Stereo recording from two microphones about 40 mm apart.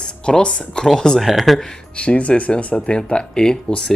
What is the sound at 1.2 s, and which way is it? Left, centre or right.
Speech, centre.